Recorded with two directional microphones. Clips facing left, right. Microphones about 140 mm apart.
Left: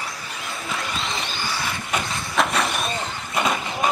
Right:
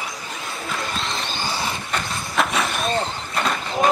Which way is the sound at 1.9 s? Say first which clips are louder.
Even; centre (ahead or behind).